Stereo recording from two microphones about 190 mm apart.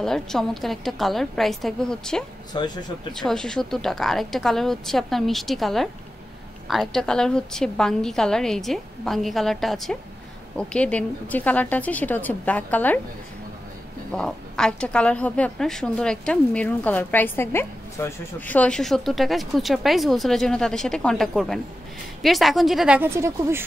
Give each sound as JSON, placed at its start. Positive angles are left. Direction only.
{"t": 0.0, "sound": "a woman's voice", "side_deg": 0}
{"t": 2.5, "sound": "speech", "side_deg": 20}
{"t": 3.1, "sound": "a woman's voice", "side_deg": 0}
{"t": 14.1, "sound": "a woman's voice", "side_deg": 5}